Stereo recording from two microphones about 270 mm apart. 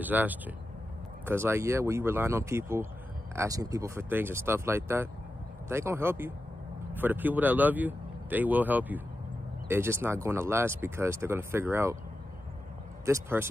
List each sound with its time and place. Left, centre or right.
0.0 s speech: centre
13.0 s speech: centre